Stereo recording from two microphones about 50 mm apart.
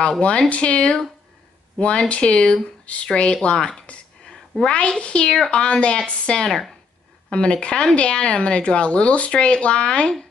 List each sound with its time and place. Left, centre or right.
0.2 s speech: left
3.8 s a sound: left
4.6 s speech: centre